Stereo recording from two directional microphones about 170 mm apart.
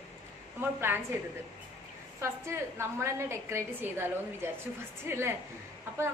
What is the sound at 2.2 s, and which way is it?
A woman's voice, 15° right (ahead or behind).